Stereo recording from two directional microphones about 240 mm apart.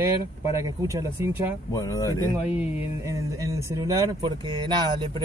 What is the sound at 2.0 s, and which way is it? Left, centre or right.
Speech, centre.